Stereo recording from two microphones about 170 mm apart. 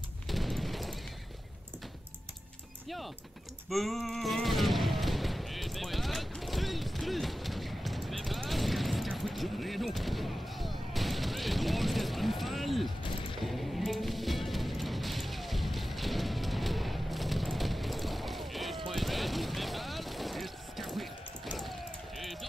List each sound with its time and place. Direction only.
0.3 s music: centre (ahead or behind)
3.7 s music: centre (ahead or behind)
13.0 s music: 30° left (ahead or behind)
13.4 s music: centre (ahead or behind)
18.9 s a sound: centre (ahead or behind)